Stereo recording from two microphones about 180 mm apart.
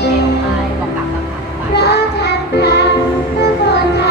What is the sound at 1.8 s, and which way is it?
Child singing, 65° left (ahead or behind).